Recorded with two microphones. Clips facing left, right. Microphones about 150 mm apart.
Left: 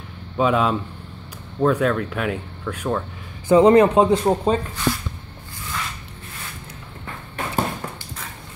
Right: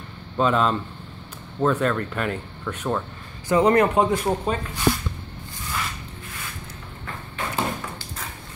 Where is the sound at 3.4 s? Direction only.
25° left (ahead or behind).